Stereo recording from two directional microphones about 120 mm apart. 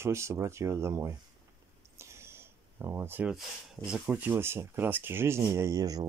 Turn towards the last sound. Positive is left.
turn(degrees=-30)  # may be behind; listen again after turning